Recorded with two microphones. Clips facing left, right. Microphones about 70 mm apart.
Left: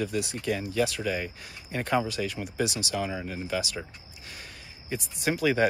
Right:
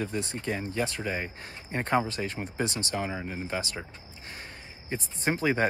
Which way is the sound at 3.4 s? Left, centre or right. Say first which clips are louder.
Left 4 dB; right.